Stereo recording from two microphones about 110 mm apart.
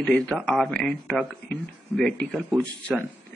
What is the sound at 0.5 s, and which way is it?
Speech, 5° left (ahead or behind).